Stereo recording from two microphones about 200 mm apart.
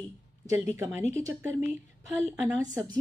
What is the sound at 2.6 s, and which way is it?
Speech, 20° right (ahead or behind).